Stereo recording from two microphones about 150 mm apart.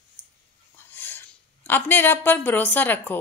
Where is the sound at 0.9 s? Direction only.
15° left (ahead or behind).